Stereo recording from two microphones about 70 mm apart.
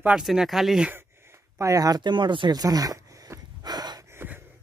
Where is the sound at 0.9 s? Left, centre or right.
Right.